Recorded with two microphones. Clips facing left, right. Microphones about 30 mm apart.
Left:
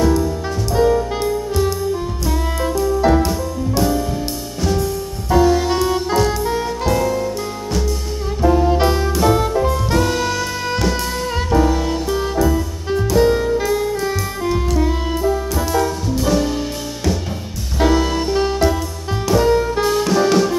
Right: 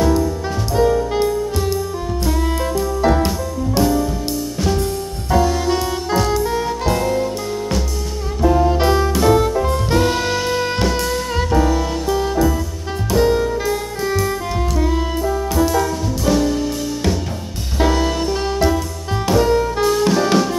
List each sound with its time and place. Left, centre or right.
0.7 s music: centre
5.3 s music: centre
8.5 s music: centre
10.0 s saxophone: right
10.6 s music: centre
10.9 s music: centre
17.7 s music: centre